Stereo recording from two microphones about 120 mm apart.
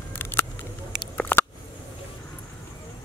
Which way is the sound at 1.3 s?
15° left (ahead or behind).